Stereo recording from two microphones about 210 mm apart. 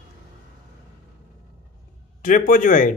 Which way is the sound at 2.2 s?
40° left (ahead or behind).